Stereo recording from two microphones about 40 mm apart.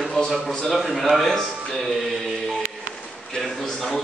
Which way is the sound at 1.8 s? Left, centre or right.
Centre.